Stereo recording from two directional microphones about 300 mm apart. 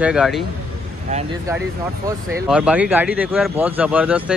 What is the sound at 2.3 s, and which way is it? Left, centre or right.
Speech, centre.